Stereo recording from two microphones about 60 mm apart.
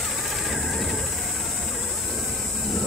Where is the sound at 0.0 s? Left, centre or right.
Centre.